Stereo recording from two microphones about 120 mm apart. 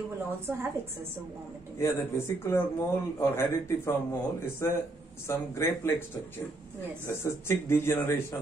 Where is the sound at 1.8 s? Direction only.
20° left (ahead or behind).